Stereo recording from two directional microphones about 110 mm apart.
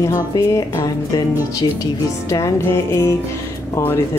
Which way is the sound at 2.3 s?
25° left (ahead or behind).